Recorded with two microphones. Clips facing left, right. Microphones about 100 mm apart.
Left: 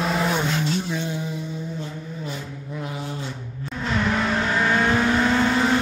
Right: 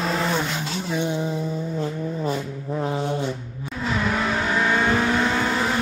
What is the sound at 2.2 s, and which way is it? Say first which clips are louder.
Vehicle: right 7 dB; 35° right (ahead or behind).